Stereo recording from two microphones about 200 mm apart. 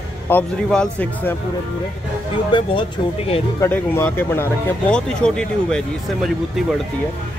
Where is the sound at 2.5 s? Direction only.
25° left (ahead or behind).